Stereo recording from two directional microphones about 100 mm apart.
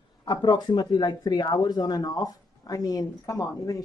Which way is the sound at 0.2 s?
45° left (ahead or behind).